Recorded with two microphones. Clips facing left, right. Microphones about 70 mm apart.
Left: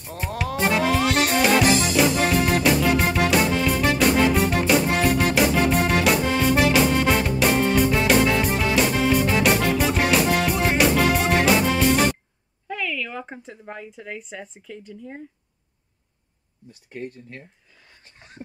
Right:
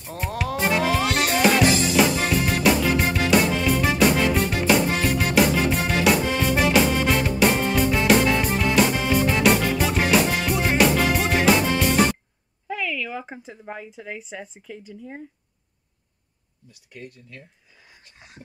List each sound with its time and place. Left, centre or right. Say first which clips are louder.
0.0 s music: even; centre
12.6 s speech: even; centre
16.7 s speech: left 7 dB; left